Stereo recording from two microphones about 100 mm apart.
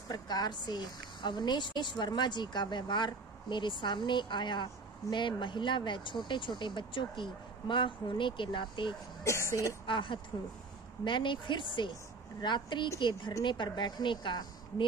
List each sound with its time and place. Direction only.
0.1 s a woman's voice: 45° left (ahead or behind)
9.2 s a sound: 30° left (ahead or behind)
9.8 s a woman's voice: 55° left (ahead or behind)